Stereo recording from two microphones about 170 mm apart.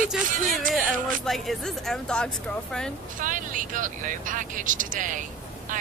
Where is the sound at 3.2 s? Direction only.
50° right (ahead or behind).